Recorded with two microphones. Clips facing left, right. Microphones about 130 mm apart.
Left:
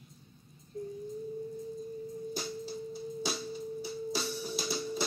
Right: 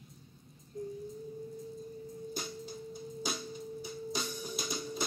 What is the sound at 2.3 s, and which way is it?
Music, 50° right (ahead or behind).